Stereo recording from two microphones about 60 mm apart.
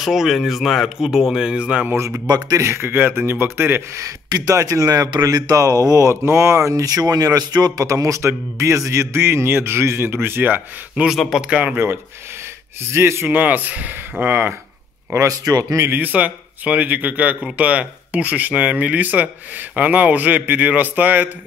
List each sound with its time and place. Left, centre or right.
0.0 s speech: centre
2.5 s a man's voice: right
3.2 s speech: right
3.9 s speech: right
6.0 s a man's voice: right
6.7 s a man's voice: right
11.1 s speech: centre
11.4 s speech: right
12.8 s a man's voice: right
13.3 s speech: right
15.1 s speech: right
16.0 s speech: right